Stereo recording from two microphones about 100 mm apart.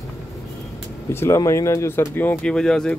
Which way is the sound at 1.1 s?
30° left (ahead or behind).